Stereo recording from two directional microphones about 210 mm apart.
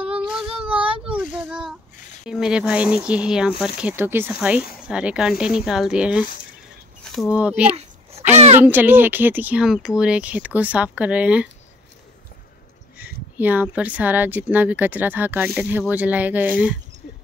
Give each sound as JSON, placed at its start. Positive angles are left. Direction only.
{"t": 0.3, "sound": "child singing", "side_deg": -5}
{"t": 2.2, "sound": "speech", "side_deg": -5}
{"t": 7.7, "sound": "a sound", "side_deg": -30}
{"t": 8.5, "sound": "speech", "side_deg": -10}
{"t": 12.9, "sound": "speech", "side_deg": -5}